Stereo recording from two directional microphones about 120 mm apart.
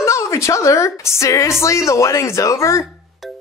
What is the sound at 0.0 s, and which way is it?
Speech, 25° left (ahead or behind).